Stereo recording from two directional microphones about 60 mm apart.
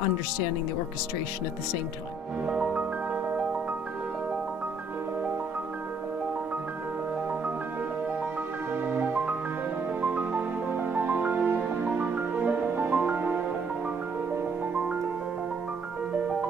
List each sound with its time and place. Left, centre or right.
2.4 s music: centre
8.8 s music: right
10.3 s music: right
16.1 s music: right